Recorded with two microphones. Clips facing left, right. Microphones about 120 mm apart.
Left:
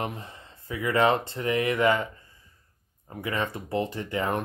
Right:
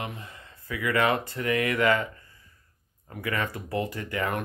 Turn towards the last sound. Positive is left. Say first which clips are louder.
# left 2 dB
turn(degrees=25)  # may be behind; listen again after turning